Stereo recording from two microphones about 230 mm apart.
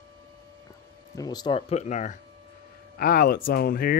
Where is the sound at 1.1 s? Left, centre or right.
Centre.